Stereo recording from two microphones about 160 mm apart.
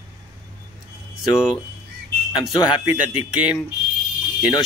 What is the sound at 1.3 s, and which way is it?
Speech, 5° right (ahead or behind).